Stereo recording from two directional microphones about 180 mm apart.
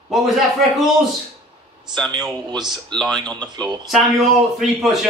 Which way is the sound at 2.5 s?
25° right (ahead or behind).